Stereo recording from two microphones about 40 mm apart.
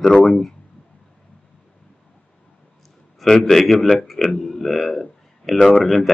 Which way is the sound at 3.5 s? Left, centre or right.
Centre.